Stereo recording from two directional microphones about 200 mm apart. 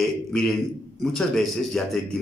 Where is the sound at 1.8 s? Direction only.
5° left (ahead or behind).